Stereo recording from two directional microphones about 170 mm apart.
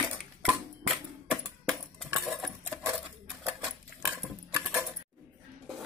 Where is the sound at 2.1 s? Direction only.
5° right (ahead or behind).